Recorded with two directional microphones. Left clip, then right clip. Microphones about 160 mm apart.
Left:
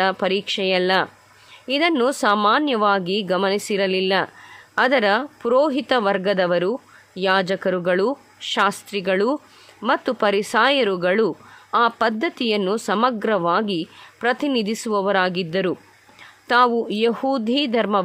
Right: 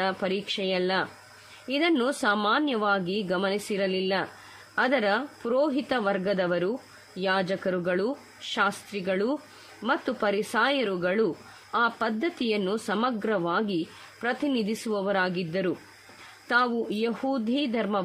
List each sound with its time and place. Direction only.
0.0 s speech: 40° left (ahead or behind)